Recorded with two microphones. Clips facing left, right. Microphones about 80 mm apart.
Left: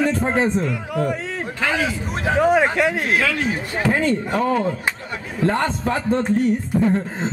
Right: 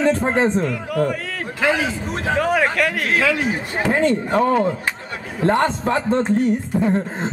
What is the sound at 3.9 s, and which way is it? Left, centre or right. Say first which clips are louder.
Speech: right 2 dB; right.